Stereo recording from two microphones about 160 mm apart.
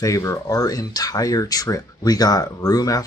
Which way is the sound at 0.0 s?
20° left (ahead or behind).